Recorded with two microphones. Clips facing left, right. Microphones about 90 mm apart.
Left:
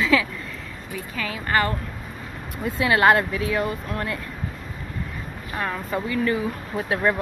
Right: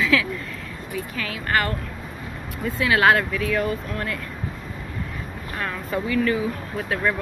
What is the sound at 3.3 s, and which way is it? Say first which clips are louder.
Speech: right 1 dB; 20° left (ahead or behind).